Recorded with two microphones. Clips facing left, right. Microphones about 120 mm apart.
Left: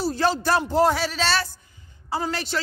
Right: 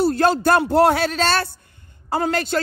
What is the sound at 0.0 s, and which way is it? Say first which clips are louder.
Speech: right 6 dB; 55° right (ahead or behind).